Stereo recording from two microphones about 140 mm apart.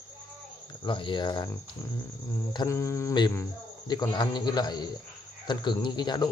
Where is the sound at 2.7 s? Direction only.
20° left (ahead or behind).